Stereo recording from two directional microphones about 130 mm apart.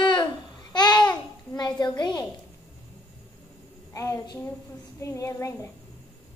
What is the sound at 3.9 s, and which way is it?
Child singing, 25° left (ahead or behind).